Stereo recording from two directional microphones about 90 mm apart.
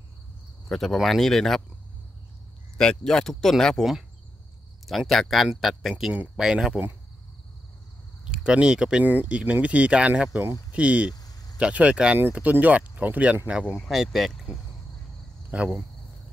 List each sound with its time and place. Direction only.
0.7 s speech: centre (ahead or behind)
2.8 s speech: 10° left (ahead or behind)
4.8 s speech: centre (ahead or behind)
8.3 s speech: 10° right (ahead or behind)
11.1 s vehicle: 45° left (ahead or behind)
11.5 s speech: 15° right (ahead or behind)
15.5 s speech: 15° right (ahead or behind)